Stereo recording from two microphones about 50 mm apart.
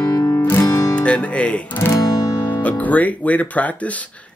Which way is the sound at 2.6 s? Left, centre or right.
Left.